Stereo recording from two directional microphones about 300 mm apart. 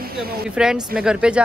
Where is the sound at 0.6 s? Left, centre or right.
Centre.